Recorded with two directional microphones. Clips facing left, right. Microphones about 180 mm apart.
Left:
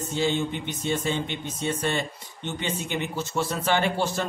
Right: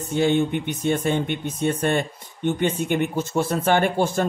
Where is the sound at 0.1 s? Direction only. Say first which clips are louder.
Right 6 dB; 55° right (ahead or behind).